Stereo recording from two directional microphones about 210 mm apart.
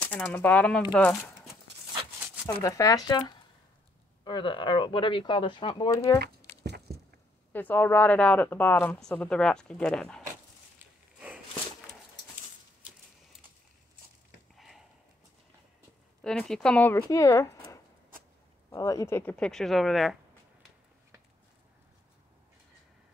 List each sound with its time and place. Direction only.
0.0 s speech: 5° left (ahead or behind)
2.4 s speech: 15° left (ahead or behind)
6.9 s a sound: 50° right (ahead or behind)
7.5 s speech: 10° left (ahead or behind)
16.2 s speech: 5° left (ahead or behind)
18.7 s speech: 15° left (ahead or behind); by 20.2 s centre (ahead or behind)